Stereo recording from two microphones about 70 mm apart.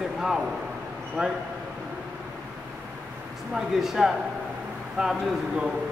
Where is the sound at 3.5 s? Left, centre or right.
Centre.